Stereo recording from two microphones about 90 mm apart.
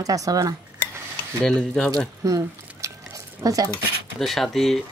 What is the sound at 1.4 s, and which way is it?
Cutlery, 10° left (ahead or behind).